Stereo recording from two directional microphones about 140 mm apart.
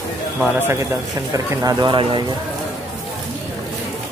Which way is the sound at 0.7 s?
20° right (ahead or behind).